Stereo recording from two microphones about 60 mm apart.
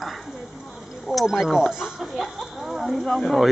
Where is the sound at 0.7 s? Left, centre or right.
Centre.